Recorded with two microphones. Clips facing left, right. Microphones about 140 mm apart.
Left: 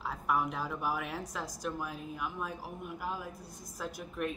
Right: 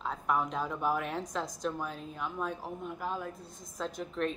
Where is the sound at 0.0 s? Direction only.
5° left (ahead or behind).